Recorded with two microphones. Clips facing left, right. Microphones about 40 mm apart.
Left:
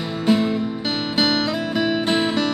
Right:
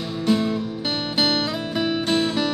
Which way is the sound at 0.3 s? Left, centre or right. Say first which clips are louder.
Left 2 dB; centre.